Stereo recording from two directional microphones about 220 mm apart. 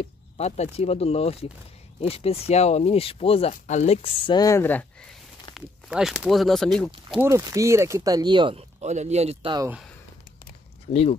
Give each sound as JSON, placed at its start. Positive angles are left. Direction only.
{"t": 0.4, "sound": "speech", "side_deg": 30}
{"t": 5.5, "sound": "speech", "side_deg": 0}
{"t": 7.2, "sound": "speech", "side_deg": -15}
{"t": 10.9, "sound": "speech", "side_deg": 25}